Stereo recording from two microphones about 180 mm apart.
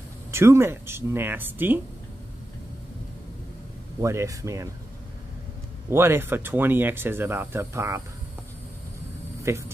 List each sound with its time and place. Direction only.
0.3 s speech: 15° right (ahead or behind)
4.0 s speech: 15° right (ahead or behind)
5.9 s speech: 15° right (ahead or behind)
9.4 s speech: 15° right (ahead or behind)